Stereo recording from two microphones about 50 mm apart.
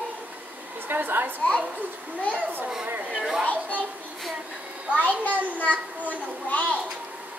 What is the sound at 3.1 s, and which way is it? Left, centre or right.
Speech, centre.